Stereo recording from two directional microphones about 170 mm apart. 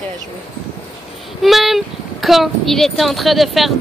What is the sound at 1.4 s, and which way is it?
Speech, centre (ahead or behind).